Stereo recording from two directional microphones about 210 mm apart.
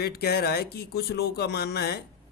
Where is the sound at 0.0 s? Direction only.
50° left (ahead or behind).